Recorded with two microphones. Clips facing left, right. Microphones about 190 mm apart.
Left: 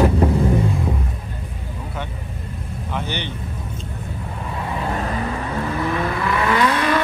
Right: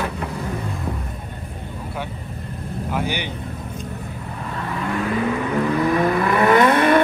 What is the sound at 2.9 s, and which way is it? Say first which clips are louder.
Speech: right 2 dB; 10° right (ahead or behind).